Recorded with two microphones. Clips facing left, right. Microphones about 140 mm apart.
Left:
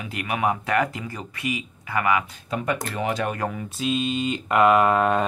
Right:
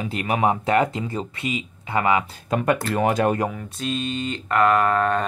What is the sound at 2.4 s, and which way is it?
Speech, 55° right (ahead or behind).